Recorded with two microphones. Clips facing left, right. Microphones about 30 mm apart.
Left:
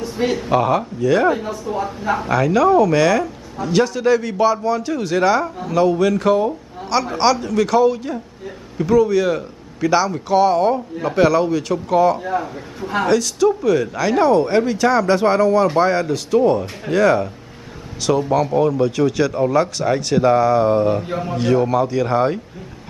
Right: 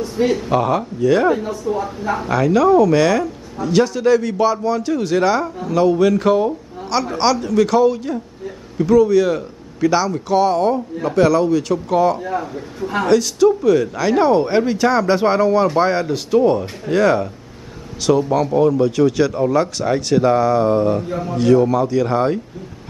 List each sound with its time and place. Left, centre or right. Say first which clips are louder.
0.0 s speech: right 2 dB; centre
1.3 s speech: right 2 dB; centre
21.0 s a man's voice: even; left
21.4 s speech: right 3 dB; centre